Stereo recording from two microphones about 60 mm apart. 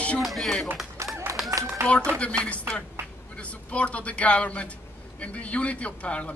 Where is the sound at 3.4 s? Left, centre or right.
Left.